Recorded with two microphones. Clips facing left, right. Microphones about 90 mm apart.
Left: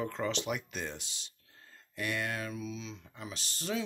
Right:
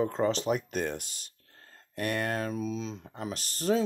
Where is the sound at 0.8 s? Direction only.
55° right (ahead or behind).